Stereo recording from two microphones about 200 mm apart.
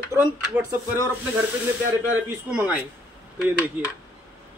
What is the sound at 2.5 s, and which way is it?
Speech, 5° right (ahead or behind).